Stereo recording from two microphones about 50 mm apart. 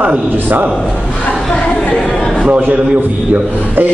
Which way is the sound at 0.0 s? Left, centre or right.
Right.